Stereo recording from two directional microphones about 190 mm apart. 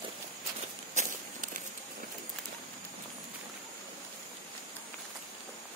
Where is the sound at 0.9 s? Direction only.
40° right (ahead or behind).